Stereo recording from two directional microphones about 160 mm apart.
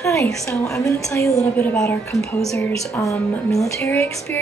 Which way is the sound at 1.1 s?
20° left (ahead or behind).